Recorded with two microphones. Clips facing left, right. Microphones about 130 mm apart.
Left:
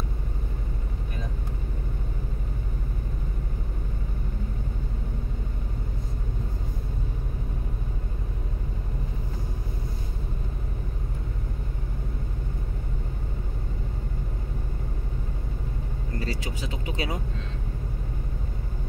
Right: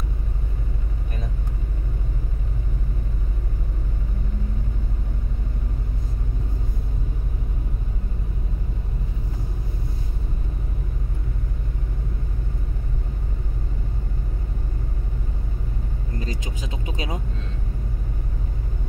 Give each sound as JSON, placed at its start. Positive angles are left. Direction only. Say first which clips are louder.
{"t": 16.2, "sound": "vehicle", "louder": "left 1 dB", "side_deg": -20}